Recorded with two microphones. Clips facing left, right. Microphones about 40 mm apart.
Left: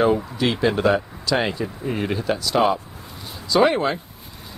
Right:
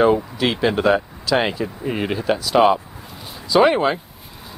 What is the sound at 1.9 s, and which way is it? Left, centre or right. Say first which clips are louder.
Speech: right 2 dB; right.